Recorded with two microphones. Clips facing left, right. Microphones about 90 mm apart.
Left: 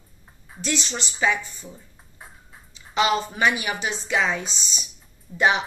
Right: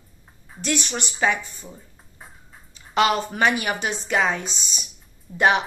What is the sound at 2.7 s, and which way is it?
A woman's voice, 55° right (ahead or behind).